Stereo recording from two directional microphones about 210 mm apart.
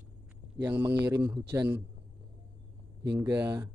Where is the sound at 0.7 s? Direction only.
10° right (ahead or behind).